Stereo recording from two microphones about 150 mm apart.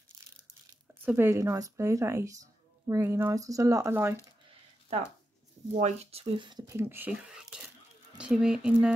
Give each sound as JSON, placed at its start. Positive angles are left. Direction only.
{"t": 1.0, "sound": "speech", "side_deg": -15}
{"t": 5.8, "sound": "speech", "side_deg": -45}
{"t": 6.7, "sound": "speech", "side_deg": -15}